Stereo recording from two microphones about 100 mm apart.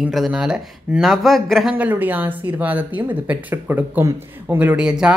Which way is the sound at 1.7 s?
15° right (ahead or behind).